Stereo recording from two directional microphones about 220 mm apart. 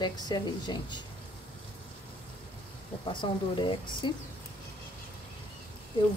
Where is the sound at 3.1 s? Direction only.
20° left (ahead or behind).